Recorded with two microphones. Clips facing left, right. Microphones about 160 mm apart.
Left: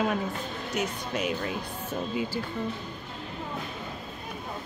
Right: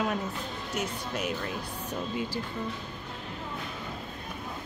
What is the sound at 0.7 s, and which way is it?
Speech, 10° left (ahead or behind).